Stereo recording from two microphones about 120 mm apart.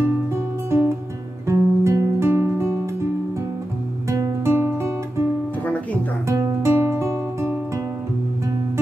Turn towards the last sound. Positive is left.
turn(degrees=-25)  # may be behind; listen again after turning